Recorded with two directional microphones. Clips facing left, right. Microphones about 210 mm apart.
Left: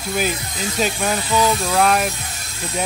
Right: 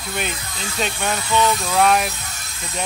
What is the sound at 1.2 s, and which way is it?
Speech, 30° left (ahead or behind).